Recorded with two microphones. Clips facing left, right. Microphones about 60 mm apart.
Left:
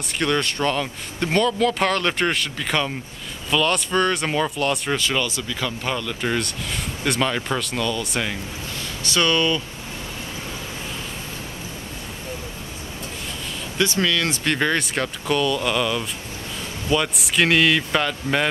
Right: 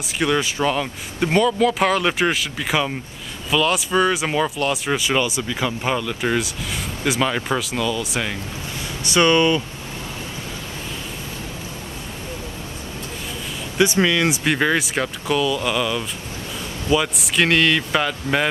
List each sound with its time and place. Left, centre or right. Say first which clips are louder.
0.2 s speech: right 2 dB; centre
9.0 s speech: right 4 dB; right
13.7 s speech: right 4 dB; centre